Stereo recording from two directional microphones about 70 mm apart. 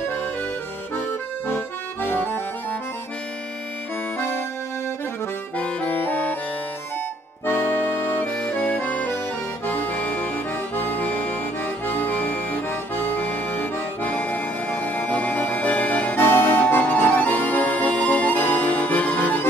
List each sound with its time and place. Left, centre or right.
1.5 s accordion: left
5.6 s accordion: left
7.4 s music: left
9.7 s accordion: left